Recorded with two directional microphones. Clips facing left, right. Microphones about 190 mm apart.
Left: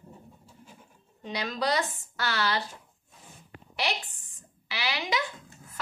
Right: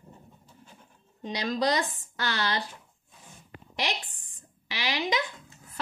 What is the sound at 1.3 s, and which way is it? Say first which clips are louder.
A woman's voice: right 2 dB; 35° right (ahead or behind).